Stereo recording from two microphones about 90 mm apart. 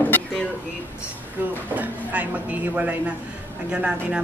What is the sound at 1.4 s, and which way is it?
A woman's voice, 20° right (ahead or behind).